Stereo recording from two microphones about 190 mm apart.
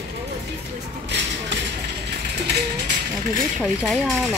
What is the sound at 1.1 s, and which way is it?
Speech, 65° right (ahead or behind).